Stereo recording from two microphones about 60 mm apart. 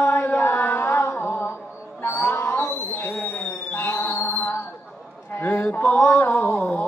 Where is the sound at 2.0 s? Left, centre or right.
Left.